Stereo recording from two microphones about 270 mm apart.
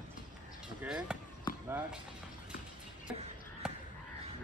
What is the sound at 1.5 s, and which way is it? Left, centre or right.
Basketball bounce, centre.